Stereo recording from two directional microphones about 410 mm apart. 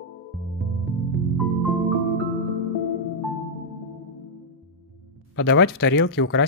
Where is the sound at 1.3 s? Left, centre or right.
Centre.